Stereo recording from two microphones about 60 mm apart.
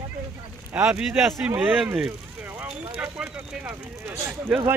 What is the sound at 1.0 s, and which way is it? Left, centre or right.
Speech, centre.